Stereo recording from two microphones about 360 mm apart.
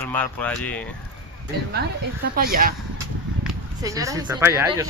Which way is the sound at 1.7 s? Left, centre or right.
Right.